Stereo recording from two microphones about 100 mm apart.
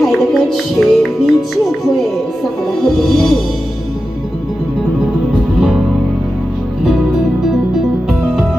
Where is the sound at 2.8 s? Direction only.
5° left (ahead or behind).